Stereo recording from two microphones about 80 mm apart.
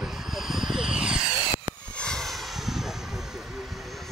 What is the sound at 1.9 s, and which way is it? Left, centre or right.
Vehicle, centre.